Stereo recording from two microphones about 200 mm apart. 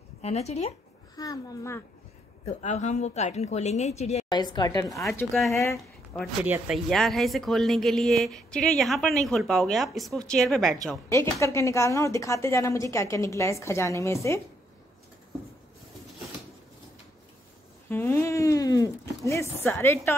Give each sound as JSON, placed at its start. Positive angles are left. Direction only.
{"t": 0.2, "sound": "a woman's voice", "side_deg": 30}
{"t": 1.1, "sound": "a woman's voice", "side_deg": 15}
{"t": 2.6, "sound": "a woman's voice", "side_deg": 35}
{"t": 4.3, "sound": "a woman's voice", "side_deg": 20}
{"t": 5.0, "sound": "a woman's voice", "side_deg": 0}
{"t": 11.1, "sound": "a woman's voice", "side_deg": 15}
{"t": 17.8, "sound": "a woman's voice", "side_deg": 10}